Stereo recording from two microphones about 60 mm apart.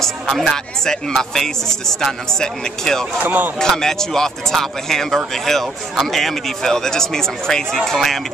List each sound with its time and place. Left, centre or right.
0.0 s speech: centre
3.2 s speech: right
3.5 s speech: centre